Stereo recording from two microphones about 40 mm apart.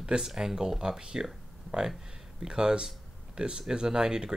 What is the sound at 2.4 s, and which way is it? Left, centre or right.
Speech, centre.